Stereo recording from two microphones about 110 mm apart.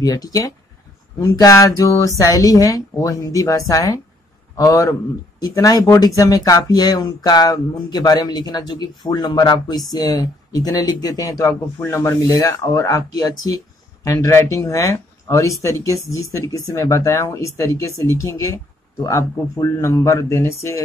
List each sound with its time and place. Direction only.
0.0 s speech: 35° left (ahead or behind)
11.8 s speech: 25° left (ahead or behind)